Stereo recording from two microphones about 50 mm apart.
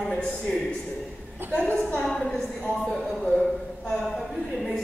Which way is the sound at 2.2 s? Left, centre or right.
Centre.